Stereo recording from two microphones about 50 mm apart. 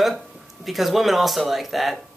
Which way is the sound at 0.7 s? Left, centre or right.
Centre.